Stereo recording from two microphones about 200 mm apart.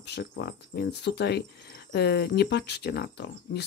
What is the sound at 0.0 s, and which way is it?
Speech, 60° left (ahead or behind).